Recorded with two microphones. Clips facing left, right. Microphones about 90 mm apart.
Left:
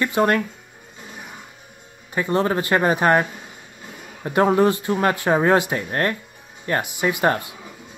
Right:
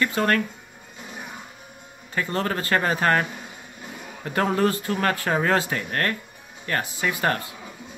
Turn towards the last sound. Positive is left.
turn(degrees=20)  # may be behind; listen again after turning